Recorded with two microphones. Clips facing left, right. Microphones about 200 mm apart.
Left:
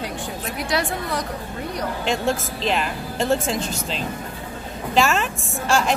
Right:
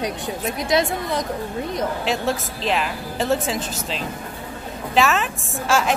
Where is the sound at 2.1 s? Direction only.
Centre (ahead or behind).